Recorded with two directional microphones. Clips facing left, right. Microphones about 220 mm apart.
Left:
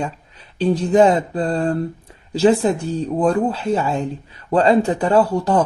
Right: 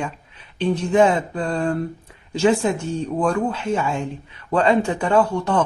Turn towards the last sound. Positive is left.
turn(degrees=35)  # may be behind; listen again after turning